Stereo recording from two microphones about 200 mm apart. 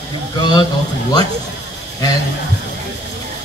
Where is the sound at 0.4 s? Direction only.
20° left (ahead or behind).